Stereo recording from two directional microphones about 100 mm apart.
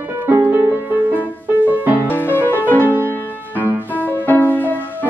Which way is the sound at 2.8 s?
20° right (ahead or behind).